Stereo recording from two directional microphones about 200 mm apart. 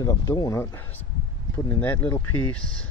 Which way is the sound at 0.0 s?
20° left (ahead or behind).